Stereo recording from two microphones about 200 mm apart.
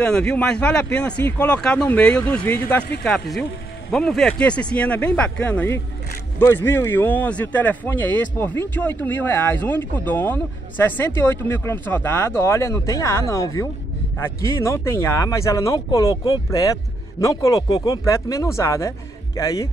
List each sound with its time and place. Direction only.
0.0 s speech: 5° left (ahead or behind)
17.2 s speech: 15° left (ahead or behind)